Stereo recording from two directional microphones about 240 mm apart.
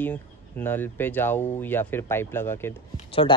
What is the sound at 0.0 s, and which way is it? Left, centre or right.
Speech, centre.